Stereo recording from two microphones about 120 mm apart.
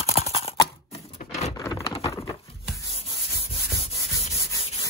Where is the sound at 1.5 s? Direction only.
30° left (ahead or behind).